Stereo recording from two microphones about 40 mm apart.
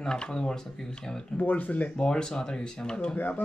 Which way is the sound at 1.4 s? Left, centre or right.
Left.